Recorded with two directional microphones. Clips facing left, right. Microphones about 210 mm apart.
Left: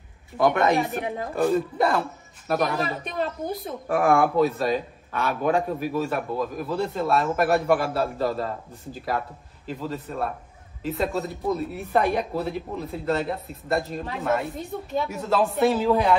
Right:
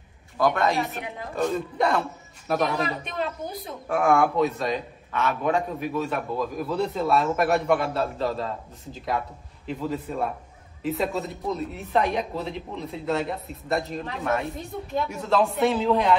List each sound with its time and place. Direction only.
0.4 s speech: 20° left (ahead or behind)
1.3 s speech: 5° left (ahead or behind)